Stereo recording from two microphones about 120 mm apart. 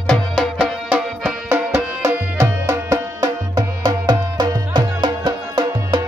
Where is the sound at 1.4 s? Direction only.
20° right (ahead or behind).